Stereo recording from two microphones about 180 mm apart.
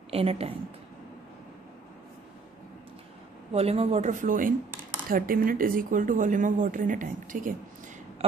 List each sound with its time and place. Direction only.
0.1 s speech: 35° right (ahead or behind)
3.5 s speech: 35° right (ahead or behind)
8.2 s a sound: 35° right (ahead or behind)